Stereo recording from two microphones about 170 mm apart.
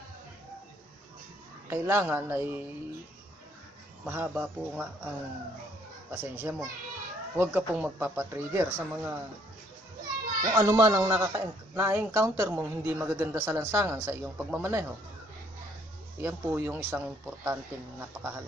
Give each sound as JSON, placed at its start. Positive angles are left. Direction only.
{"t": 1.7, "sound": "speech", "side_deg": -15}
{"t": 4.0, "sound": "speech", "side_deg": -10}
{"t": 6.1, "sound": "speech", "side_deg": -10}
{"t": 10.5, "sound": "speech", "side_deg": -20}
{"t": 16.2, "sound": "speech", "side_deg": -15}